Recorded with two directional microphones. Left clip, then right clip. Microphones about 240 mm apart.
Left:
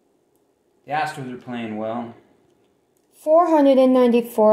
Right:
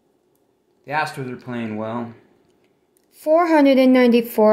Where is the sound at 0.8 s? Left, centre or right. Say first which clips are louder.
Right 1 dB; right.